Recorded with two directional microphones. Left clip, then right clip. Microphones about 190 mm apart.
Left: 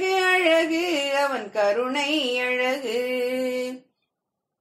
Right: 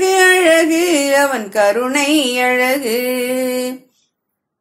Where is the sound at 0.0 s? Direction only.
50° right (ahead or behind).